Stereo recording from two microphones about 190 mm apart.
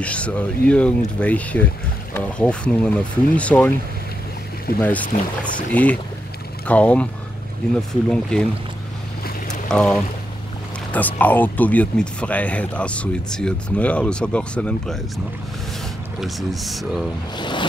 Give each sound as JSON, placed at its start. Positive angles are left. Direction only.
{"t": 0.0, "sound": "speech", "side_deg": 5}
{"t": 4.7, "sound": "speech", "side_deg": 10}
{"t": 8.1, "sound": "speech", "side_deg": 5}
{"t": 9.7, "sound": "speech", "side_deg": 5}
{"t": 16.2, "sound": "speech", "side_deg": 0}
{"t": 17.4, "sound": "music", "side_deg": 25}